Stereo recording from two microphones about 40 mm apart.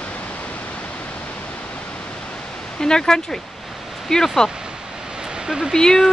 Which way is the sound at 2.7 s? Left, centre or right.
Centre.